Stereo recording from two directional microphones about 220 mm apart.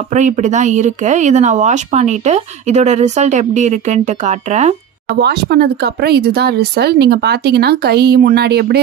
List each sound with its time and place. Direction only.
0.1 s speech: 35° right (ahead or behind)
5.2 s speech: 45° right (ahead or behind)